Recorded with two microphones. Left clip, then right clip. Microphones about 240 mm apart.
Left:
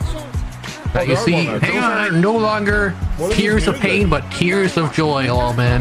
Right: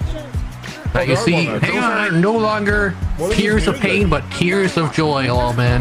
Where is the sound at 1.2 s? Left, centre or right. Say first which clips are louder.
Even; centre.